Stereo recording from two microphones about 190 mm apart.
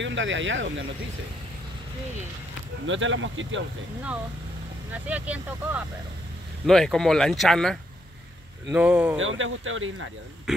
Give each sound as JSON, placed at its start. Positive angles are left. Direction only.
{"t": 0.0, "sound": "speech", "side_deg": -80}
{"t": 2.9, "sound": "speech", "side_deg": -90}
{"t": 4.9, "sound": "speech", "side_deg": -10}
{"t": 9.2, "sound": "speech", "side_deg": -90}